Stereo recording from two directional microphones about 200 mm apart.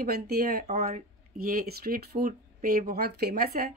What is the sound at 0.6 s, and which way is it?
Speech, 35° right (ahead or behind).